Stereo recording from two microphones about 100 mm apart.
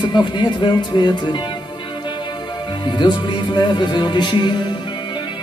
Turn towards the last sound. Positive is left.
turn(degrees=50)  # may be behind; listen again after turning